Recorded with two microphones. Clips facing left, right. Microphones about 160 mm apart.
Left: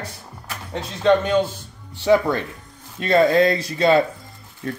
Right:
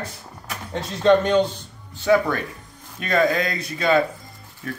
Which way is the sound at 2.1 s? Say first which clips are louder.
Left 2 dB; 20° left (ahead or behind).